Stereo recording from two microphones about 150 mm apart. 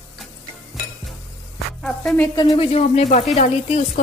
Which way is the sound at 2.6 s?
45° left (ahead or behind).